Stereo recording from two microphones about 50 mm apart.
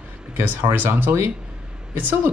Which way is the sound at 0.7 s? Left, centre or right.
Right.